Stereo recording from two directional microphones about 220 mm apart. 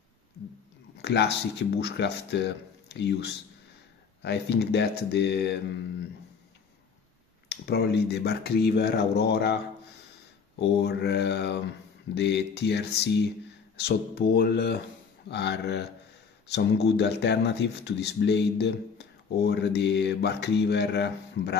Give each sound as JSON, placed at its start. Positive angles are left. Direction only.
{"t": 1.0, "sound": "speech", "side_deg": 50}
{"t": 7.4, "sound": "speech", "side_deg": 50}
{"t": 10.6, "sound": "speech", "side_deg": 50}